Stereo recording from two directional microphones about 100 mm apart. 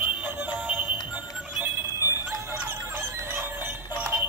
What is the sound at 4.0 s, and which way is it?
Music, 20° right (ahead or behind).